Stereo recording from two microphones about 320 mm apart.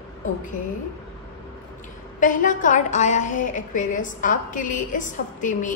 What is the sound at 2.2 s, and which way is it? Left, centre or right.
A woman's voice, left.